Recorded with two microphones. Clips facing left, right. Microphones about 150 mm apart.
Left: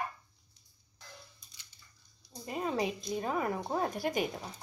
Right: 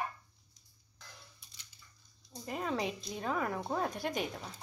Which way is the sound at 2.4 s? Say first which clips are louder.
Left 2 dB; 10° left (ahead or behind).